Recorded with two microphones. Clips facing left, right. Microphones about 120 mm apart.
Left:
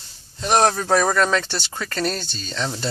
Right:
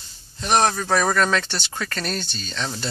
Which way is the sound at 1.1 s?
15° left (ahead or behind).